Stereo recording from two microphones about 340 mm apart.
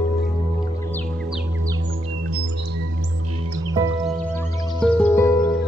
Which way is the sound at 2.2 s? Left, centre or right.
Right.